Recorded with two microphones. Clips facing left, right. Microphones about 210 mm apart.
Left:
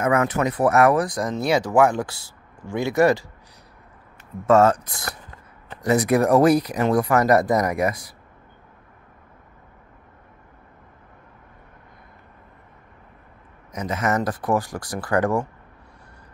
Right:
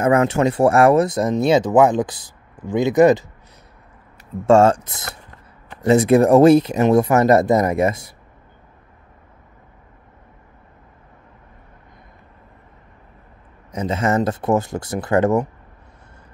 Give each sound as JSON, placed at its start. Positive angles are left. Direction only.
{"t": 0.0, "sound": "speech", "side_deg": -30}
{"t": 4.5, "sound": "speech", "side_deg": -30}
{"t": 13.7, "sound": "speech", "side_deg": -30}